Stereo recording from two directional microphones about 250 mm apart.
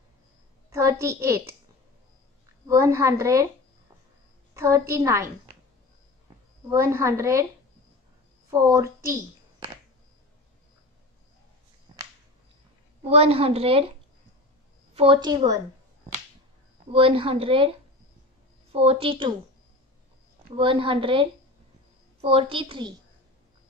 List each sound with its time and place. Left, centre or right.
0.7 s a woman's voice: centre
2.6 s a woman's voice: centre
4.6 s a woman's voice: centre
6.7 s a woman's voice: centre
8.5 s a woman's voice: centre
13.1 s speech: right
15.0 s a woman's voice: centre
16.9 s speech: right
18.7 s speech: right
20.4 s speech: right